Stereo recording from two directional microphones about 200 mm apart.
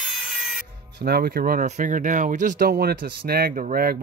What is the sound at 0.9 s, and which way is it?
Speech, 50° right (ahead or behind).